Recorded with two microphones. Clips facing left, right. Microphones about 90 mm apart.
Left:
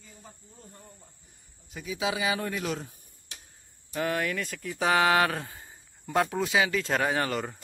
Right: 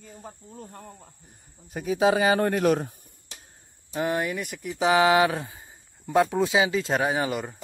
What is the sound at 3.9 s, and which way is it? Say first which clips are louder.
Speech: right 3 dB; 20° right (ahead or behind).